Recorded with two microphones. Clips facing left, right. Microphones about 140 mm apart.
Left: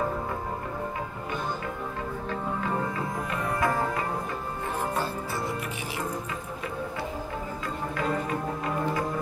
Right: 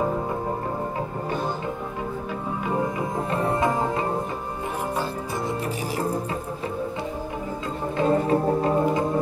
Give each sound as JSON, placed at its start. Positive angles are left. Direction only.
{"t": 2.6, "sound": "music", "side_deg": -15}
{"t": 3.2, "sound": "music", "side_deg": -30}
{"t": 8.0, "sound": "music", "side_deg": -30}